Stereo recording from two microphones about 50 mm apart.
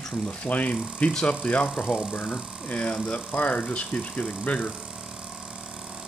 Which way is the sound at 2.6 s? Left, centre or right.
Left.